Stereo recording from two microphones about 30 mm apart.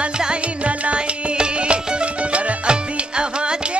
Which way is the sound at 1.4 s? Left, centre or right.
Right.